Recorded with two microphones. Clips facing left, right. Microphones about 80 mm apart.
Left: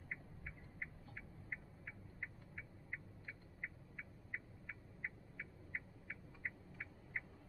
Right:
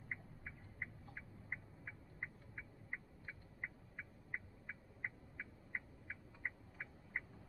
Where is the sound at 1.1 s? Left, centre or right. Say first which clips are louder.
Right 1 dB; right.